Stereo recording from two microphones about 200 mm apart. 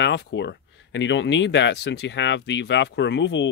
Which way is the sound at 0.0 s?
60° left (ahead or behind).